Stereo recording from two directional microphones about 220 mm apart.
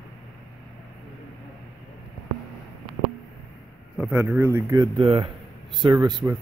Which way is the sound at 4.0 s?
5° right (ahead or behind).